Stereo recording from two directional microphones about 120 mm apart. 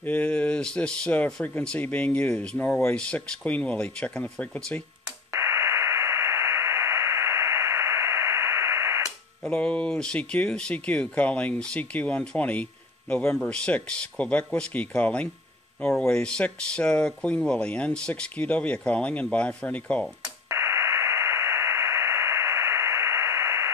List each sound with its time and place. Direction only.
0.0 s speech: 15° left (ahead or behind)
5.3 s radio: 20° right (ahead or behind)
9.4 s speech: 10° left (ahead or behind)
20.4 s radio: 20° right (ahead or behind)